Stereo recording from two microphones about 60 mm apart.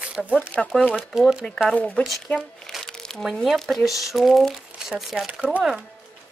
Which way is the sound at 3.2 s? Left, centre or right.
Centre.